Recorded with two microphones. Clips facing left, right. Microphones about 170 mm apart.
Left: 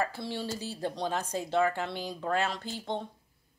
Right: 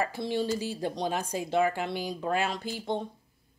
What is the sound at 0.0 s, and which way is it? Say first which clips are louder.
Speech: right 4 dB; 15° right (ahead or behind).